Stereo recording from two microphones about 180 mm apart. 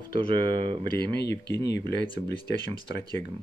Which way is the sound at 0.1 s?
25° right (ahead or behind).